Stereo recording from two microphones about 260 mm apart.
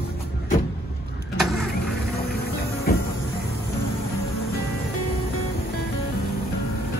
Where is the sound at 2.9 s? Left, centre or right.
Left.